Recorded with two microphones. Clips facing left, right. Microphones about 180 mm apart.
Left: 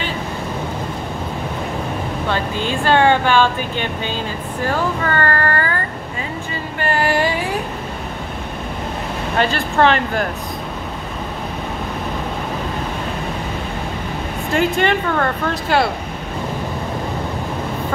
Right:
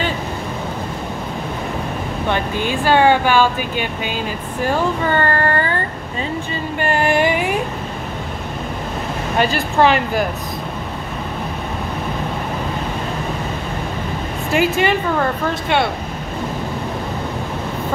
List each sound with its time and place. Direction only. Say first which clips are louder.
2.2 s speech: right 2 dB; 15° right (ahead or behind)
5.0 s child singing: right 2 dB; 20° right (ahead or behind)
6.8 s child singing: right 1 dB; 20° right (ahead or behind)
9.4 s speech: right 1 dB; 10° right (ahead or behind)
14.5 s speech: right 1 dB; 5° right (ahead or behind)